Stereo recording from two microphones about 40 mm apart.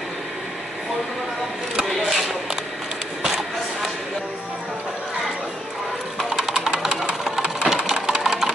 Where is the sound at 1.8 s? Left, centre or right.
Centre.